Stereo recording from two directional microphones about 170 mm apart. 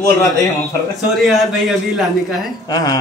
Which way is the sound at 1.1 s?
Centre (ahead or behind).